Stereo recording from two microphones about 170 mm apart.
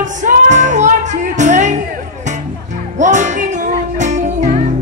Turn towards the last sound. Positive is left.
turn(degrees=-45)  # may be behind; listen again after turning